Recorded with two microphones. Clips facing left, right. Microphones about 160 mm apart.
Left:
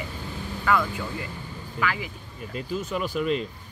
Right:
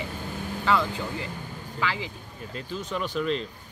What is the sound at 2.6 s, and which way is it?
Speech, 10° left (ahead or behind).